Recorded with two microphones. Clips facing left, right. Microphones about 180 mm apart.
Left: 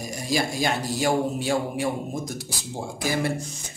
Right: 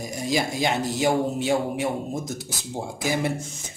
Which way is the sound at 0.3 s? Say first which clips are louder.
Right 1 dB; 20° right (ahead or behind).